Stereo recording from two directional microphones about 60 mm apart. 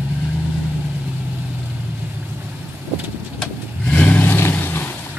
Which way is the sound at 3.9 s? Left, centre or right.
Left.